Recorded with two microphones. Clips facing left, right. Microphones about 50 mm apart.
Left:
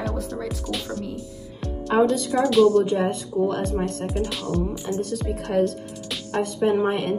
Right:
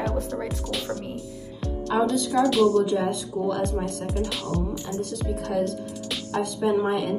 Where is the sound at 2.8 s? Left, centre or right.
Left.